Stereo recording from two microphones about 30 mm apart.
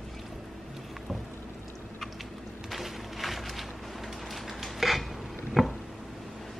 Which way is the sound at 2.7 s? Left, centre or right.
Centre.